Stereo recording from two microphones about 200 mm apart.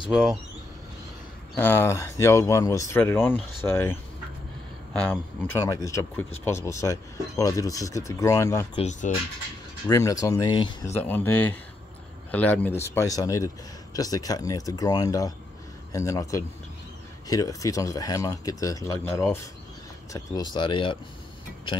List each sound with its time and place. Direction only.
0.1 s speech: centre (ahead or behind)
1.5 s speech: 10° left (ahead or behind)
8.7 s speech: 35° left (ahead or behind)
9.8 s speech: 15° left (ahead or behind)
11.0 s speech: 10° left (ahead or behind)